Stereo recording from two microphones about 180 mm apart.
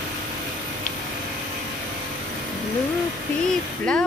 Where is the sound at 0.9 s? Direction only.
45° left (ahead or behind).